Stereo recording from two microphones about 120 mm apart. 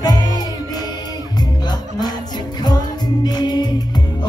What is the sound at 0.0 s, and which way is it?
Music, 35° left (ahead or behind).